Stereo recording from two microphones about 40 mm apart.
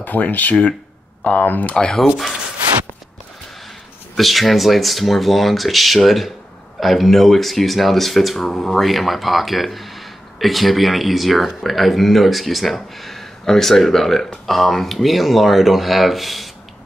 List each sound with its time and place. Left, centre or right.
0.0 s speech: left
1.7 s speech: left
4.2 s speech: centre